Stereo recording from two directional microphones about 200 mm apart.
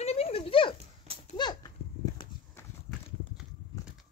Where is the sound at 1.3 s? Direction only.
20° left (ahead or behind).